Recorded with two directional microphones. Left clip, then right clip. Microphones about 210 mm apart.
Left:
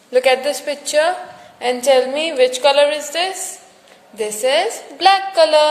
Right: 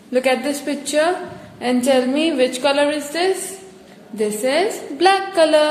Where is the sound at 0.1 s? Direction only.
20° left (ahead or behind).